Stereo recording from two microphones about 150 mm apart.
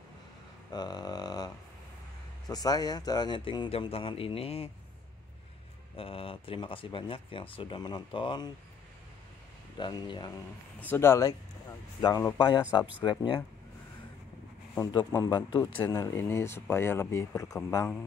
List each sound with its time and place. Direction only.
0.7 s a sound: 30° left (ahead or behind)
2.4 s speech: 25° left (ahead or behind)
5.9 s speech: 35° left (ahead or behind)
9.8 s speech: 30° left (ahead or behind)
10.8 s speech: 15° left (ahead or behind)
12.4 s speech: 30° left (ahead or behind)
14.8 s speech: 25° left (ahead or behind)
15.7 s speech: 15° left (ahead or behind)